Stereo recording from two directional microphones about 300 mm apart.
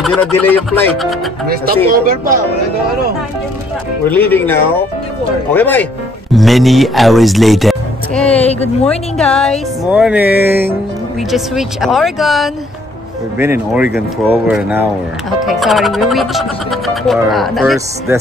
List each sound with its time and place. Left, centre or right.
0.0 s speech: centre
1.9 s speech: right
4.1 s speech: centre